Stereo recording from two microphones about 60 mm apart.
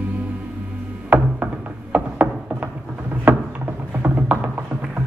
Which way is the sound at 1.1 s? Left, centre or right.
Right.